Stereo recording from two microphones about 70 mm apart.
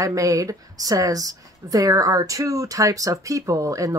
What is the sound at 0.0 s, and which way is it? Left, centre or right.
A woman's voice, right.